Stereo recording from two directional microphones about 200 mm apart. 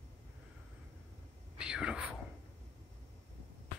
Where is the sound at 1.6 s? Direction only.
5° right (ahead or behind).